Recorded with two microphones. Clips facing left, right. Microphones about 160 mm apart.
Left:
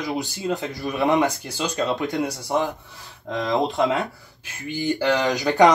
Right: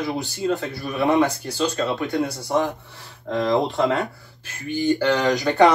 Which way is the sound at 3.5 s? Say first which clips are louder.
Even; 20° left (ahead or behind).